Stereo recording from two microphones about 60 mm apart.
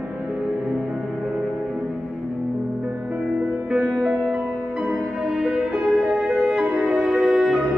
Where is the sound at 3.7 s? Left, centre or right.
Centre.